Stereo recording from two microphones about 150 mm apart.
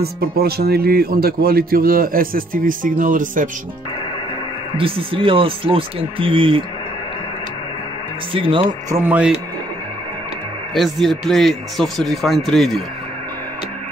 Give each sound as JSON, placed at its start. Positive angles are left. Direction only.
{"t": 0.0, "sound": "speech", "side_deg": -90}
{"t": 4.7, "sound": "speech", "side_deg": -35}
{"t": 8.3, "sound": "speech", "side_deg": -35}
{"t": 8.9, "sound": "speech", "side_deg": -10}
{"t": 10.7, "sound": "speech", "side_deg": 0}